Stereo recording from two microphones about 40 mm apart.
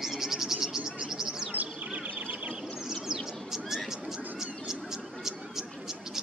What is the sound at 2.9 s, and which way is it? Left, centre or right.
Bird, centre.